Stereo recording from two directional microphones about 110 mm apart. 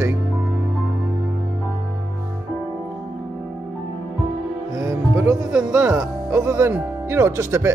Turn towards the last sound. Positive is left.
turn(degrees=-25)  # may be behind; listen again after turning